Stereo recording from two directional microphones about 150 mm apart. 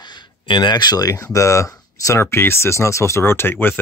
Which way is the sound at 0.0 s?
30° left (ahead or behind).